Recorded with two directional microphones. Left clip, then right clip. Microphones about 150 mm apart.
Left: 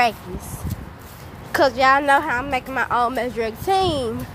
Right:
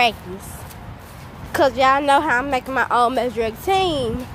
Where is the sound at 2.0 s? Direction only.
15° right (ahead or behind).